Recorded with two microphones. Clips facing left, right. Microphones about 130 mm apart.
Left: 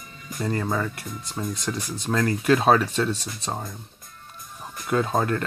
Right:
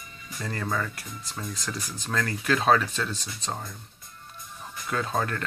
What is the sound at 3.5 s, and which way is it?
Speech, 20° left (ahead or behind).